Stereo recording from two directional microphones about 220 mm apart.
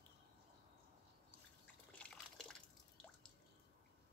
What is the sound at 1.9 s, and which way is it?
Liquid, 5° left (ahead or behind).